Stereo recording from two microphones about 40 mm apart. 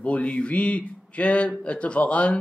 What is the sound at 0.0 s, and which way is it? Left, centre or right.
Speech, left.